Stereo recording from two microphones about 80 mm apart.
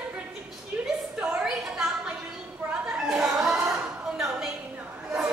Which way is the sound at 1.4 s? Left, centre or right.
Centre.